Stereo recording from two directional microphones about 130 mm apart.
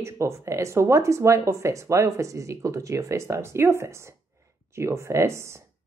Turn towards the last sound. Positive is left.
turn(degrees=-20)  # may be behind; listen again after turning